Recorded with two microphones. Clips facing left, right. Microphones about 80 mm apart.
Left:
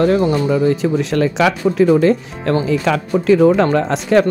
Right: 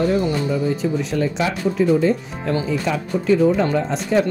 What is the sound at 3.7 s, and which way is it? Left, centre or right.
Speech, left.